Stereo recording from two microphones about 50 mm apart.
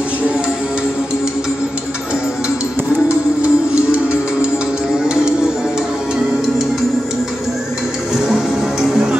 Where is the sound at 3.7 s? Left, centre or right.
Right.